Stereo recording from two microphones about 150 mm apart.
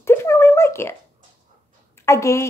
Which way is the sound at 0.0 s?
15° left (ahead or behind).